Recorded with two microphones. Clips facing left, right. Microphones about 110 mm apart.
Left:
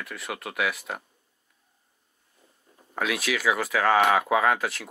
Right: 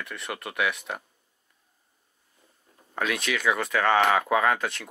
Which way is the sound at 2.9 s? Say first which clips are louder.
Left 1 dB; 5° left (ahead or behind).